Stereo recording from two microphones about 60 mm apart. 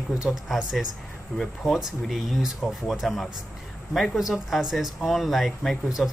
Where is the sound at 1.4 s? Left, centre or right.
Centre.